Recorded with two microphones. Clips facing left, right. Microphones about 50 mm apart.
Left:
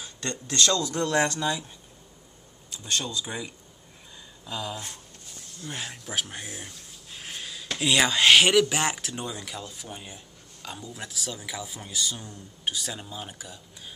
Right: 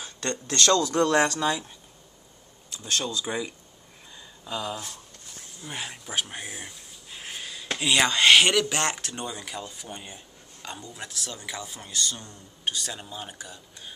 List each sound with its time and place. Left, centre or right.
0.2 s speech: right
1.2 s speech: right
2.7 s speech: centre
3.3 s speech: right
4.5 s speech: centre
5.6 s a sound: centre
7.6 s a sound: centre
7.9 s speech: centre